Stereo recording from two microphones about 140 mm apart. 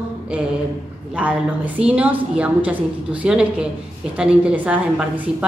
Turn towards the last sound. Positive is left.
turn(degrees=-10)  # may be behind; listen again after turning